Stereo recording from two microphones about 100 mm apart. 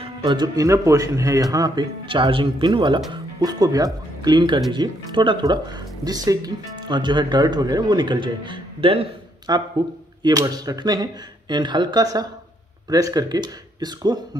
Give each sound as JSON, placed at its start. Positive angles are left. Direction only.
{"t": 0.6, "sound": "speech", "side_deg": -35}
{"t": 2.0, "sound": "speech", "side_deg": -60}
{"t": 3.1, "sound": "speech", "side_deg": -40}
{"t": 9.5, "sound": "speech", "side_deg": -45}